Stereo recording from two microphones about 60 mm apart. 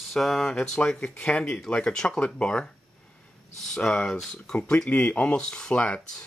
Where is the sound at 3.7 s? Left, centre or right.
Centre.